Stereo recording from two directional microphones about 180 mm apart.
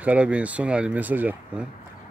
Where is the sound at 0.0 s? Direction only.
5° right (ahead or behind).